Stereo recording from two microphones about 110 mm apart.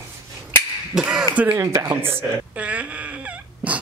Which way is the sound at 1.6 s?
30° right (ahead or behind).